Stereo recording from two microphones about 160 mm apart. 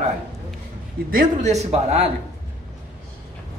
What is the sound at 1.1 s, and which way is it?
Speech, 55° right (ahead or behind).